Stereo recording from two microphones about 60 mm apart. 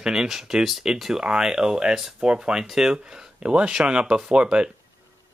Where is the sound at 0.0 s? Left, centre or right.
Centre.